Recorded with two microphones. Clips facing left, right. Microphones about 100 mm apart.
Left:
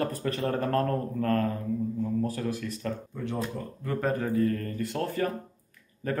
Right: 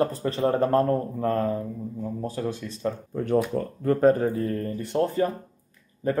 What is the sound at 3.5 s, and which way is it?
Speech, 45° right (ahead or behind).